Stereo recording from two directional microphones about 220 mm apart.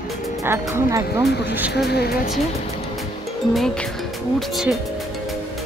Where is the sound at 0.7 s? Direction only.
15° right (ahead or behind).